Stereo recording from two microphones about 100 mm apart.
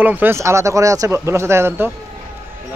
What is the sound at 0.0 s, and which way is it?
Speech, 20° right (ahead or behind).